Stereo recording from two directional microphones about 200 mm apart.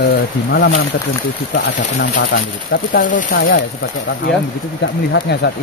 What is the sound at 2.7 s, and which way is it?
Speech, 40° left (ahead or behind).